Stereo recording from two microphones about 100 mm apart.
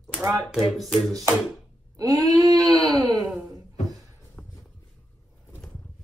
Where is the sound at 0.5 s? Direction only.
Centre (ahead or behind).